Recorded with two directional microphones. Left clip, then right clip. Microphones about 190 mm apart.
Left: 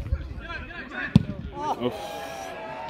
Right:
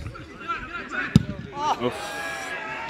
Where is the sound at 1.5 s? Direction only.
50° left (ahead or behind).